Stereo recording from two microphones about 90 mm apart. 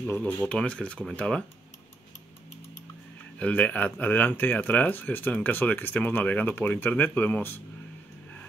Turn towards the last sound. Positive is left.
turn(degrees=25)  # may be behind; listen again after turning